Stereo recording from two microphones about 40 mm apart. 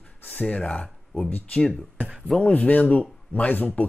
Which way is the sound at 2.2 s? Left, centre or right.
Left.